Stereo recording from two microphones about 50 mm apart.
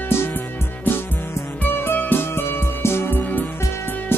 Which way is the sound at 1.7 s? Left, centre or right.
Left.